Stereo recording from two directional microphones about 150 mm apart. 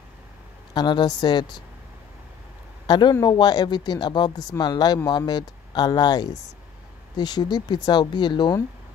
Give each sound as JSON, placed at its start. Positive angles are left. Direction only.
{"t": 0.7, "sound": "speech", "side_deg": 30}
{"t": 2.9, "sound": "speech", "side_deg": 30}